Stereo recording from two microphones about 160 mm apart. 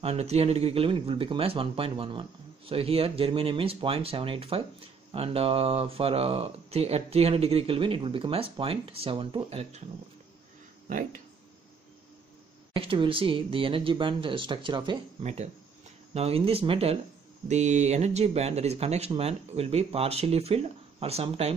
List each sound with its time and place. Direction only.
0.0 s speech: 40° right (ahead or behind)
12.7 s speech: 35° right (ahead or behind)
15.2 s speech: 45° right (ahead or behind)